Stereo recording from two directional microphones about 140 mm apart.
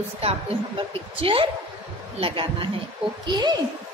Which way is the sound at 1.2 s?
40° right (ahead or behind).